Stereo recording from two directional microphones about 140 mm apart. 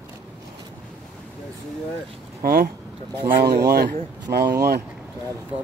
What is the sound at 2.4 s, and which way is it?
Speech, 90° right.